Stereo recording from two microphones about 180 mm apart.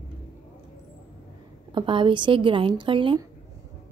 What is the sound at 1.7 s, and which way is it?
A woman's voice, 30° right (ahead or behind).